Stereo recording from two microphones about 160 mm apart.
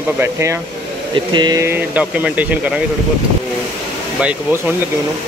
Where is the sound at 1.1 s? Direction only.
30° right (ahead or behind).